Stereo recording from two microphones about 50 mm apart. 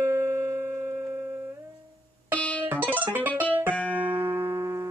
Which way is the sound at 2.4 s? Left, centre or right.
Left.